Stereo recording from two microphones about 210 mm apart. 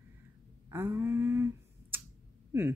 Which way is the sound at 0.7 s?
10° right (ahead or behind).